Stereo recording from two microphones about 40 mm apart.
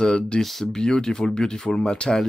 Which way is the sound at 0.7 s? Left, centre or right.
Centre.